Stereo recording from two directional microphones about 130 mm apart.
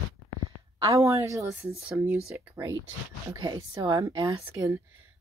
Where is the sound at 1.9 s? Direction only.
10° right (ahead or behind); by 4.4 s 35° right (ahead or behind).